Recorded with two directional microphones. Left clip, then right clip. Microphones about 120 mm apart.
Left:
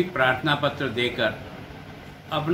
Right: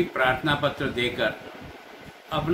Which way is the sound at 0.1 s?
Centre (ahead or behind).